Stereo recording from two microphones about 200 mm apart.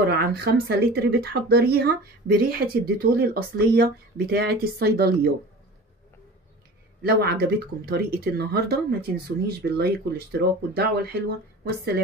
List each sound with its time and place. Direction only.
0.1 s speech: 50° right (ahead or behind)
7.0 s speech: 50° right (ahead or behind)